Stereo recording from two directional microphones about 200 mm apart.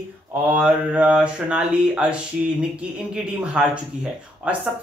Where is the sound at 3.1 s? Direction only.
5° right (ahead or behind).